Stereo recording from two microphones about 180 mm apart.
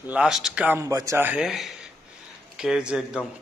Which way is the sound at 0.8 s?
15° right (ahead or behind).